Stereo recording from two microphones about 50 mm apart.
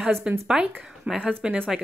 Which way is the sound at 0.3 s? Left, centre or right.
Right.